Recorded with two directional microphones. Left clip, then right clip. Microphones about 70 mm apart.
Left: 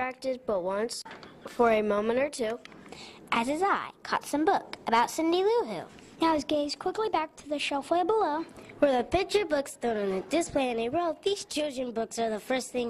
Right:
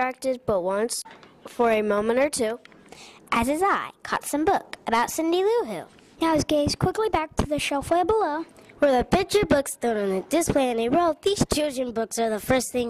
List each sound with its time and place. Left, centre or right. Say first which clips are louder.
0.0 s a woman's voice: right 6 dB; right